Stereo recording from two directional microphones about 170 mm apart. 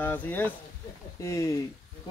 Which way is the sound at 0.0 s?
10° left (ahead or behind).